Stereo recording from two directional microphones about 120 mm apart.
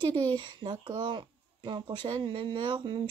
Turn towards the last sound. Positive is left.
turn(degrees=-40)  # may be behind; listen again after turning